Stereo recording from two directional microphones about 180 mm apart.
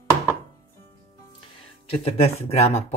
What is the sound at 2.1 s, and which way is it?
Speech, 35° left (ahead or behind).